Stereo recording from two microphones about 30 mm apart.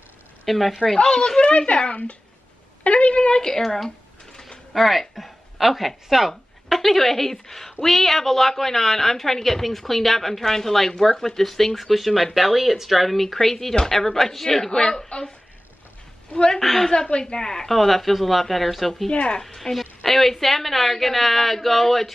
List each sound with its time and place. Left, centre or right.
0.5 s speech: centre
1.4 s a woman's voice: left
3.3 s speech: left
3.6 s a woman's voice: centre
4.3 s a sound: left
4.7 s a woman's voice: centre
14.7 s speech: left
16.5 s a woman's voice: centre
17.2 s speech: left
17.6 s a woman's voice: centre